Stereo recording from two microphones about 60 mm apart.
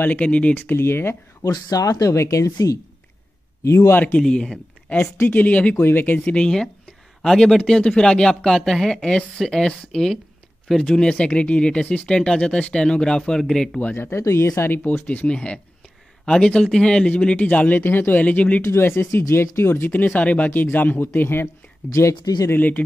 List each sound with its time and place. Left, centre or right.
0.0 s speech: left
0.6 s speech: left
1.7 s speech: left
3.6 s speech: left
4.2 s speech: centre
4.9 s speech: left
5.3 s speech: left
5.8 s speech: left; by 13.7 s centre
13.9 s speech: left
15.0 s speech: left
18.6 s speech: left
22.5 s speech: left